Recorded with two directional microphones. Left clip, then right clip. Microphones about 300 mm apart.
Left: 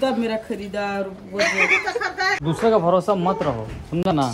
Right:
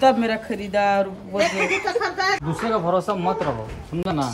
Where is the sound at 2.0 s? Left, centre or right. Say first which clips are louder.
Even; right.